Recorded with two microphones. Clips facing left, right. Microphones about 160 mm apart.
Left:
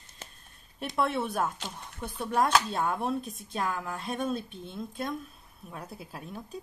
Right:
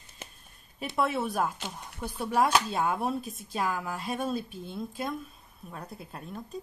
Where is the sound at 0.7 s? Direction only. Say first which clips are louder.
Even; 5° right (ahead or behind).